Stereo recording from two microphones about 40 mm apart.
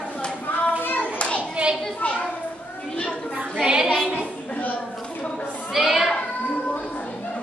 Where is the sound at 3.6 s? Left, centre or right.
Right.